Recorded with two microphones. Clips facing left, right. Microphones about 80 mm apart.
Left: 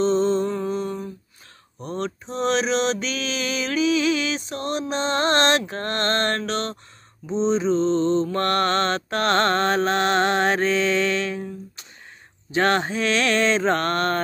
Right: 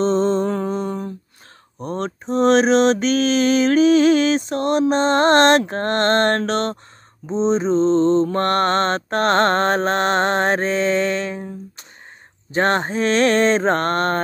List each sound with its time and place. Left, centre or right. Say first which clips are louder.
0.0 s music: right 2 dB; right
0.7 s mantra: right 3 dB; right
12.5 s mantra: right 2 dB; right